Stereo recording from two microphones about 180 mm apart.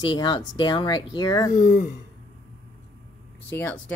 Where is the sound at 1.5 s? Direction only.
45° left (ahead or behind).